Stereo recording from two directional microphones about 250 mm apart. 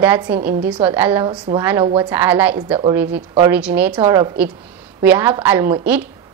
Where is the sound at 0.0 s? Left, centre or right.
Centre.